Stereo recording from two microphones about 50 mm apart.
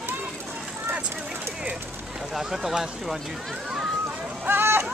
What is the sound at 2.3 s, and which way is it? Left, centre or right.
Speech, centre.